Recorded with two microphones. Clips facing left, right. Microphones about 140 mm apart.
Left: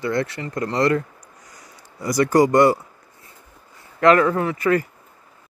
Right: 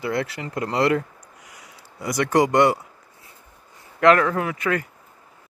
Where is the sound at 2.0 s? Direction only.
Centre (ahead or behind).